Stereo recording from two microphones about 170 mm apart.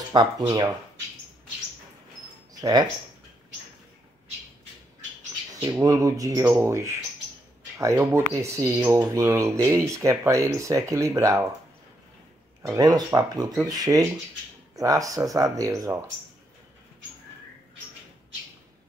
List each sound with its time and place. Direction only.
0.1 s speech: 25° right (ahead or behind)
2.6 s speech: 25° right (ahead or behind)
5.6 s speech: 20° right (ahead or behind)
12.7 s speech: 20° right (ahead or behind)